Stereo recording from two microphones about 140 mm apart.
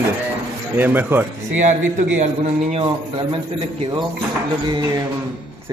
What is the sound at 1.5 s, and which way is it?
A man's voice, 60° right (ahead or behind).